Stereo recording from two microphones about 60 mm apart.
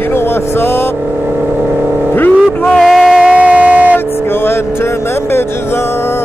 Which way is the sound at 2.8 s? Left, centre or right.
Centre.